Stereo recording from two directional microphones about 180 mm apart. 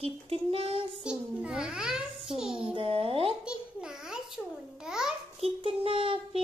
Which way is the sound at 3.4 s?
5° right (ahead or behind).